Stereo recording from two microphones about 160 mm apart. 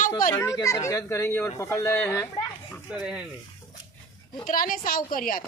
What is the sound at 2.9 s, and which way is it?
Speech, 5° right (ahead or behind).